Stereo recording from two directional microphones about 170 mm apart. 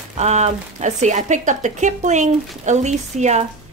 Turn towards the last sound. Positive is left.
turn(degrees=-40)  # may be behind; listen again after turning